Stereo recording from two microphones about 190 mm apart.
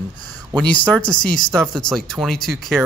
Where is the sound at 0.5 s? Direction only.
5° left (ahead or behind).